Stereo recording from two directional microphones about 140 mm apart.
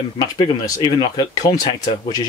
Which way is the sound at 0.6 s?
30° left (ahead or behind).